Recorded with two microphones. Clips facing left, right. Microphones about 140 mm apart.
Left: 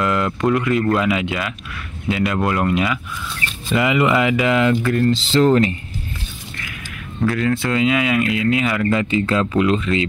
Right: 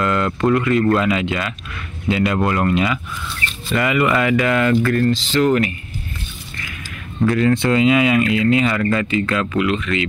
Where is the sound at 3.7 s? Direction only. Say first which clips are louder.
Left 1 dB; 20° left (ahead or behind).